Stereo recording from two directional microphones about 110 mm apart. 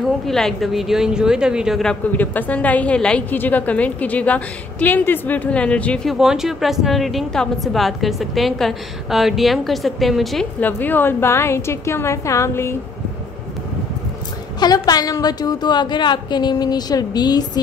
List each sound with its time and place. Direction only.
0.3 s a woman's voice: 5° left (ahead or behind)
2.1 s a woman's voice: 15° left (ahead or behind)
6.0 s a woman's voice: 5° right (ahead or behind)
10.6 s a woman's voice: 15° left (ahead or behind)
14.6 s a woman's voice: 35° left (ahead or behind)